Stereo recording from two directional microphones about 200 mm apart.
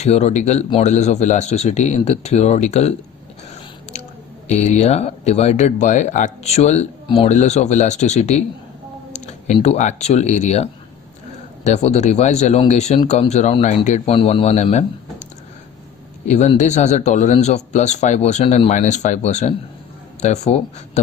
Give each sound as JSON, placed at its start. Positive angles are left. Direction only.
{"t": 0.0, "sound": "speech", "side_deg": 35}
{"t": 4.5, "sound": "speech", "side_deg": 35}
{"t": 16.3, "sound": "speech", "side_deg": 35}